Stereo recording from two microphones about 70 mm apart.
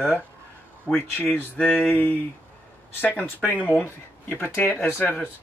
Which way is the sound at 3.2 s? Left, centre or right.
Left.